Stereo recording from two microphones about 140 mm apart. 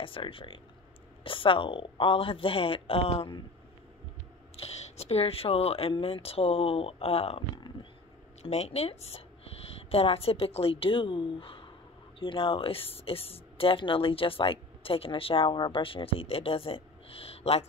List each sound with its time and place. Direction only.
0.0 s speech: 40° left (ahead or behind)
4.6 s speech: 50° left (ahead or behind)
8.4 s speech: 50° left (ahead or behind)